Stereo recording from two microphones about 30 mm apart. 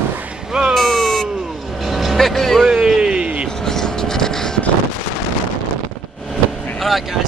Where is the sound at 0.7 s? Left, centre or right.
Centre.